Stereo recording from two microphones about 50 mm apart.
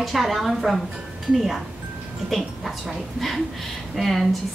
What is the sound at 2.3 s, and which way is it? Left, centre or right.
A woman's voice, centre.